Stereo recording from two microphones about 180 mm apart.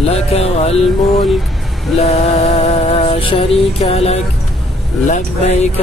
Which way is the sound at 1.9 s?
35° left (ahead or behind).